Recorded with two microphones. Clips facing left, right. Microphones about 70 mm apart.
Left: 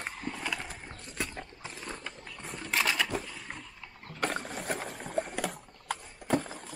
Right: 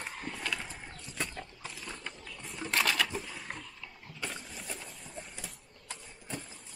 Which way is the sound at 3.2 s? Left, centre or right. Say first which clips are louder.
Even; centre.